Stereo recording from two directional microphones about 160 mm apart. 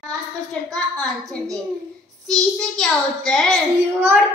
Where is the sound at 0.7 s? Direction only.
5° left (ahead or behind).